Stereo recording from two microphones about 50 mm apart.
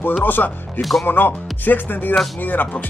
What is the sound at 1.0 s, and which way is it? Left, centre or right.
Speech, left.